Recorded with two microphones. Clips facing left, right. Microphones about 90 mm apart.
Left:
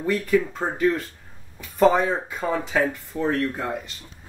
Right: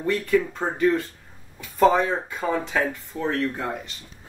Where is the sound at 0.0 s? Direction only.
Centre (ahead or behind).